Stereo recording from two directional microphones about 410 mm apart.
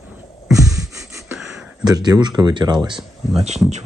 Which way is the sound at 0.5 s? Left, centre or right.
Centre.